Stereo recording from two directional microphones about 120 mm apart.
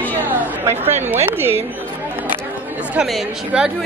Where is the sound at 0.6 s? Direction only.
20° right (ahead or behind).